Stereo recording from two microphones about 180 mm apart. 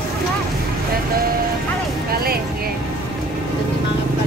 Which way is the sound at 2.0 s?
60° right (ahead or behind).